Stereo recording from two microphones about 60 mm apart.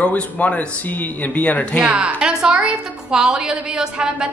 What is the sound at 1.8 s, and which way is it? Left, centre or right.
A woman's voice, right.